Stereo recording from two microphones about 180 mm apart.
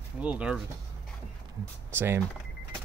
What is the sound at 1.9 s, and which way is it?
Speech, 15° right (ahead or behind).